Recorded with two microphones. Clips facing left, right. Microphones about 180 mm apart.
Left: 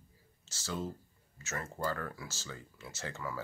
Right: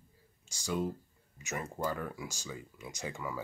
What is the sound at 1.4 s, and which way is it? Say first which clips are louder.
Speech: right 1 dB; 15° right (ahead or behind).